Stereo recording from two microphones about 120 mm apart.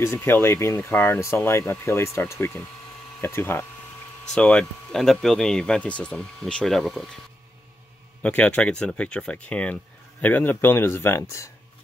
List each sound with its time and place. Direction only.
0.0 s speech: 20° left (ahead or behind)
4.3 s speech: 10° left (ahead or behind)
8.2 s speech: 10° left (ahead or behind)